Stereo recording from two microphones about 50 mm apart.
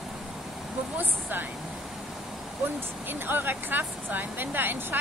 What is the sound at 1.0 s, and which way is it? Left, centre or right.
Speech, right.